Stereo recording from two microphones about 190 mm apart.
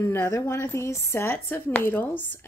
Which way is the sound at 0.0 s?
10° left (ahead or behind).